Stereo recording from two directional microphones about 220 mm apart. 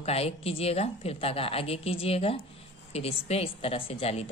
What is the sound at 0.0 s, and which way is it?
Speech, 25° left (ahead or behind).